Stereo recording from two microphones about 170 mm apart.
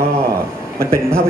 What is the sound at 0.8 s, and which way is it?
Speech, 15° right (ahead or behind).